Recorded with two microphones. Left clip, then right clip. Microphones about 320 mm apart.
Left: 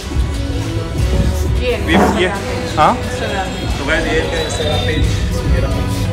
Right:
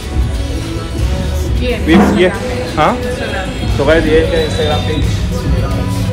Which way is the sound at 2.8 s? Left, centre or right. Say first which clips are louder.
Even; centre.